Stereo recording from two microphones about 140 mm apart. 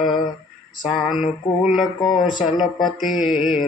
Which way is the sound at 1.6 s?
10° right (ahead or behind).